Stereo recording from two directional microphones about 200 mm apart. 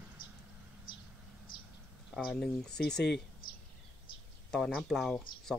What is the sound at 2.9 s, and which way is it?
Speech, 60° left (ahead or behind).